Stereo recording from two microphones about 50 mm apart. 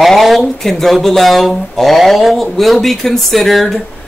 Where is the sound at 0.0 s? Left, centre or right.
Centre.